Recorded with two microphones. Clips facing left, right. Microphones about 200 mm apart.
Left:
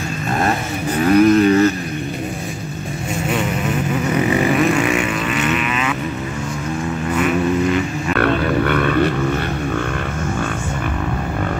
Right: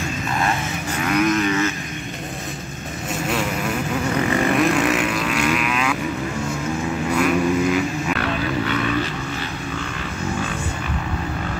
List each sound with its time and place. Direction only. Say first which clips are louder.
0.4 s vehicle: left 5 dB; 35° left (ahead or behind)
4.3 s vehicle: left 3 dB; 10° left (ahead or behind)
4.6 s vehicle: left 2 dB; centre (ahead or behind)
7.2 s vehicle: left 1 dB; centre (ahead or behind)
8.2 s a sound: left 6 dB; 55° left (ahead or behind)